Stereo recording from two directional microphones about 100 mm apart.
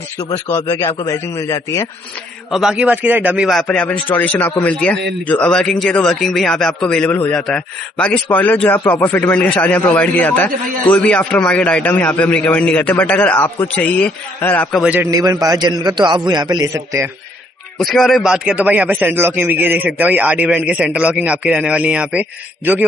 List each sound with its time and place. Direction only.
0.7 s a man's voice: 35° left (ahead or behind)
2.5 s a man's voice: 5° right (ahead or behind)
3.6 s a man's voice: 10° left (ahead or behind)
15.0 s a man's voice: 40° right (ahead or behind)
16.5 s a man's voice: 35° right (ahead or behind)
17.7 s a man's voice: centre (ahead or behind)